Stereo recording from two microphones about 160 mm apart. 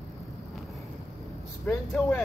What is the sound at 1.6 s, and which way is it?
Vehicle, centre (ahead or behind).